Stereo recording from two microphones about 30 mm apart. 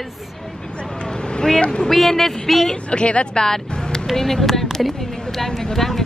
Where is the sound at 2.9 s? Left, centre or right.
Left.